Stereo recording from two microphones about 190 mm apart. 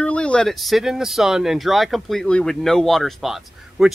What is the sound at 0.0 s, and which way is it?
A man's voice, 5° left (ahead or behind).